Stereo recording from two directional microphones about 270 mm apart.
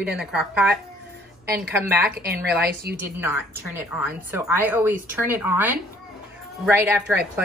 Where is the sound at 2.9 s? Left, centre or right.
Centre.